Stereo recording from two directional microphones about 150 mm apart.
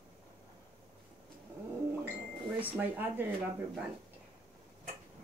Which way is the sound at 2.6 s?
15° right (ahead or behind).